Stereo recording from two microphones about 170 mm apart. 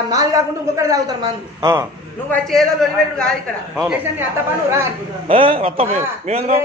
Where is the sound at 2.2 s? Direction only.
Centre (ahead or behind).